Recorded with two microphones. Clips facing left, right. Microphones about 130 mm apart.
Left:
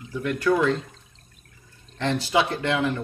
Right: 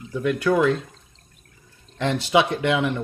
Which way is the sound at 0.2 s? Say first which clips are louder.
Right 2 dB; 15° right (ahead or behind).